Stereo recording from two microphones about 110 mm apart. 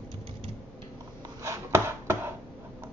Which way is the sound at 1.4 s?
25° right (ahead or behind).